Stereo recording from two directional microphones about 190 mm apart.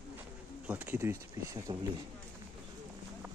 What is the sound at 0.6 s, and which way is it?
Pigeon, 10° right (ahead or behind).